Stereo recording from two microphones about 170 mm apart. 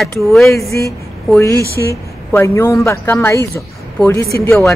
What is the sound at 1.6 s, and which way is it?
Speech, 65° left (ahead or behind).